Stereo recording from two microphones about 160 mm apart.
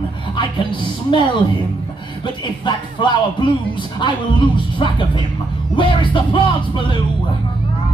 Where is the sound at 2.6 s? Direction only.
30° left (ahead or behind).